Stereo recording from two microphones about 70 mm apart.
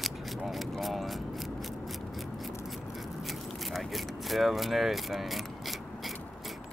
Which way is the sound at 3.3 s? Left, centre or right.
Centre.